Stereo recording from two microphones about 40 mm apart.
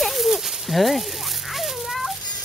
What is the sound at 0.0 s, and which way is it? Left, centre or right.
Dog, centre.